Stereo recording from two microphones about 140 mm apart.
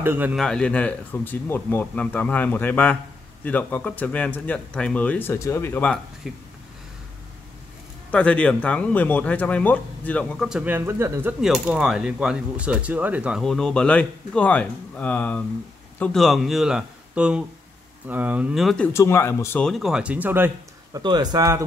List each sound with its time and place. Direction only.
0.0 s speech: 15° right (ahead or behind)
0.4 s speech: 5° left (ahead or behind)
6.2 s speech: 5° right (ahead or behind)
8.1 s speech: 10° left (ahead or behind)
10.6 s speech: 15° right (ahead or behind)
11.4 s speech: 5° right (ahead or behind)
13.4 s speech: 5° left (ahead or behind)
18.9 s speech: 20° left (ahead or behind)
19.6 s speech: centre (ahead or behind)
21.0 s speech: 30° right (ahead or behind)